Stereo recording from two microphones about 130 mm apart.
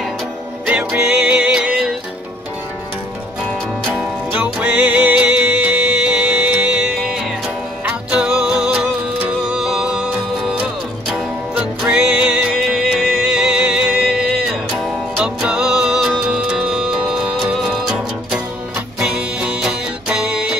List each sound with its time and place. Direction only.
0.7 s music: 10° right (ahead or behind)
3.9 s music: 10° right (ahead or behind)